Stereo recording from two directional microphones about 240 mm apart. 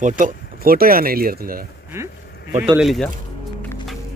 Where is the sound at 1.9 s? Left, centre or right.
Centre.